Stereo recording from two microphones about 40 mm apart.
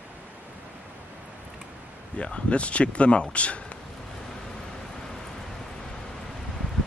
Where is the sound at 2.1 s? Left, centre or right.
Left.